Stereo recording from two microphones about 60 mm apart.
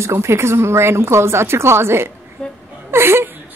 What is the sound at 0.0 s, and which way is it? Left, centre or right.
A woman's voice, right.